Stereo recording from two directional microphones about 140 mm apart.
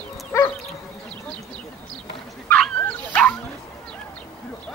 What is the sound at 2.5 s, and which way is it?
Dog, 10° left (ahead or behind).